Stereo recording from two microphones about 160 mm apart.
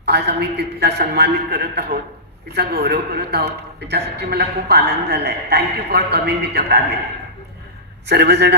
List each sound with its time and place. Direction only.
0.0 s a man's voice: 90° right
8.1 s a man's voice: 90° right